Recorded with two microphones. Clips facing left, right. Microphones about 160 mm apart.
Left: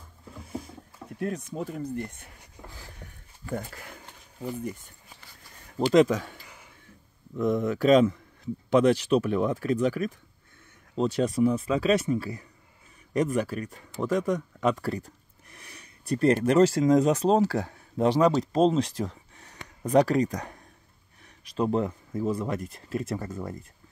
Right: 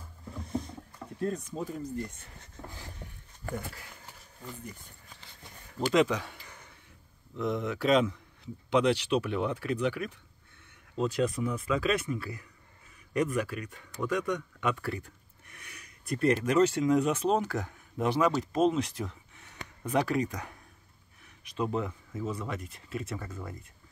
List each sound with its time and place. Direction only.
0.3 s a sound: 5° left (ahead or behind)
1.2 s speech: 70° left (ahead or behind)
2.3 s speech: 10° left (ahead or behind)
3.4 s speech: 50° right (ahead or behind)
5.9 s speech: 45° left (ahead or behind)
11.0 s speech: 30° left (ahead or behind)
22.1 s speech: 50° left (ahead or behind)
22.4 s speech: 40° left (ahead or behind)